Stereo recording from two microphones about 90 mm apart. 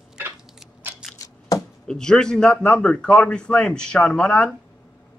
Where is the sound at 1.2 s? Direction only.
40° left (ahead or behind).